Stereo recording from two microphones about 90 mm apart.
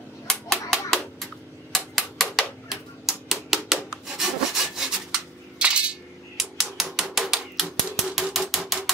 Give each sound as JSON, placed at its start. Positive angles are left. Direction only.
{"t": 0.3, "sound": "typewriter", "side_deg": 5}